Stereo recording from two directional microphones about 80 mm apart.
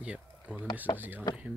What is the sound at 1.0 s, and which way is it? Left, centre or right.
Speech, right.